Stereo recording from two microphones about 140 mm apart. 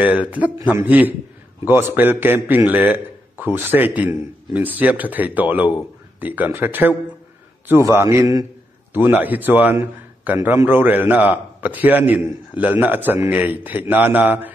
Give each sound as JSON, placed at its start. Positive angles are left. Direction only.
{"t": 0.0, "sound": "a man's voice", "side_deg": -10}
{"t": 8.9, "sound": "a man's voice", "side_deg": -15}